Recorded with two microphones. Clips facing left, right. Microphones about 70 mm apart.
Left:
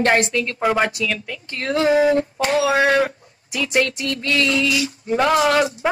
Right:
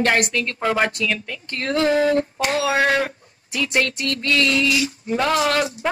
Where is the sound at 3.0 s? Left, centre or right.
Centre.